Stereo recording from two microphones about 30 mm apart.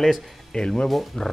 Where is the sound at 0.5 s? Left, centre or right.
Left.